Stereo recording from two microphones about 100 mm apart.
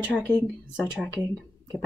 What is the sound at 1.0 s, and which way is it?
Speech, centre (ahead or behind).